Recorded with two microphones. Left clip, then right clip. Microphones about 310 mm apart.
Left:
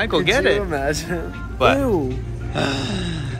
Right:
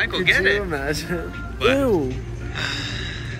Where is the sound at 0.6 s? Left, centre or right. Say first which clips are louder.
Left 3 dB; left.